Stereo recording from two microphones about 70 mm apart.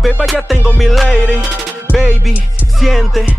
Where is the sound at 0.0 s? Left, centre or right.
Centre.